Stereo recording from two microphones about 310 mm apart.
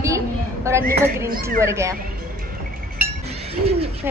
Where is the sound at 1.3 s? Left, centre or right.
Right.